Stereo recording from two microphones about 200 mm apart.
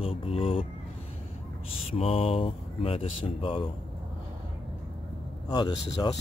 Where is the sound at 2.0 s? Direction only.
30° left (ahead or behind).